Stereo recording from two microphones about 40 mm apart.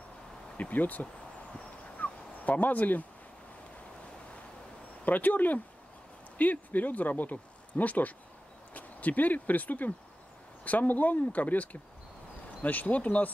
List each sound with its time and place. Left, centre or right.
0.6 s speech: left
2.0 s a sound: left
2.4 s speech: left
5.0 s speech: left